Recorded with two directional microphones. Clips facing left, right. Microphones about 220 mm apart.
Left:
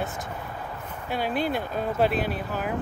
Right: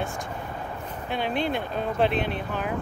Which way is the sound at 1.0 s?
5° left (ahead or behind).